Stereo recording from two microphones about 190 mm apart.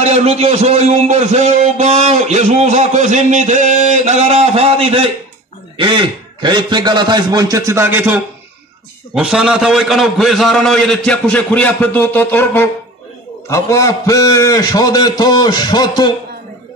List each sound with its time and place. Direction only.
0.0 s a man's voice: 35° right (ahead or behind); by 16.1 s 20° left (ahead or behind)